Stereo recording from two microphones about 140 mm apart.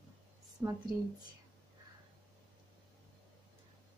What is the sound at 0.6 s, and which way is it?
Speech, 20° right (ahead or behind).